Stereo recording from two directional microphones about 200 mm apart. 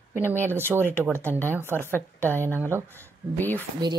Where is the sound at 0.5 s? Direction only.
10° right (ahead or behind).